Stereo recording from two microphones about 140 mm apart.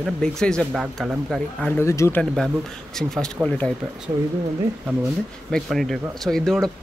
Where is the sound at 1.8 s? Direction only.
20° left (ahead or behind).